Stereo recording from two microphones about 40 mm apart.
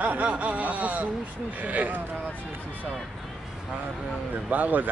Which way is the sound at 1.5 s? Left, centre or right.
Right.